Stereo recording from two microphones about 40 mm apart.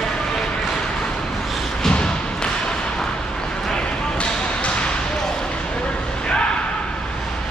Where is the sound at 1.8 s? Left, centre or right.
Left.